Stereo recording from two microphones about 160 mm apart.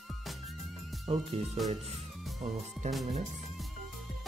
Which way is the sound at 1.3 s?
40° right (ahead or behind).